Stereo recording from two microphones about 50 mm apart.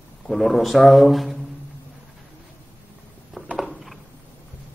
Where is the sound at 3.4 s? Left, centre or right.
Right.